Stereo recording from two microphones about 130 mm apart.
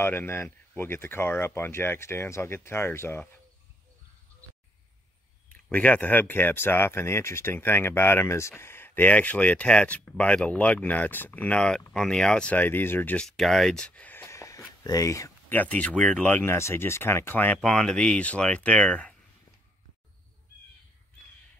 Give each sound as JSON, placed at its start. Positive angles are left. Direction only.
{"t": 0.0, "sound": "speech", "side_deg": 15}
{"t": 5.5, "sound": "speech", "side_deg": 10}
{"t": 15.6, "sound": "speech", "side_deg": 10}